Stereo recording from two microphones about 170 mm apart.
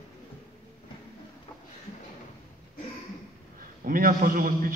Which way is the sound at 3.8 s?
55° right (ahead or behind).